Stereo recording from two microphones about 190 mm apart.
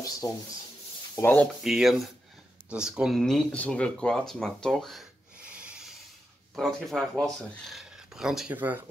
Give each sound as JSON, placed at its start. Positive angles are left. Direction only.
{"t": 0.2, "sound": "rub", "side_deg": 15}
{"t": 1.1, "sound": "speech", "side_deg": 10}
{"t": 1.6, "sound": "speech", "side_deg": 0}
{"t": 6.5, "sound": "speech", "side_deg": 0}